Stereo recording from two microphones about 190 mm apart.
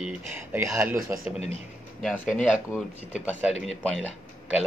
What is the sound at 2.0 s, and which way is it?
Speech, centre (ahead or behind).